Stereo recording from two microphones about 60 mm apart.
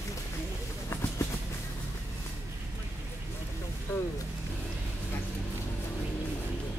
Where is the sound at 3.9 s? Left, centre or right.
Left.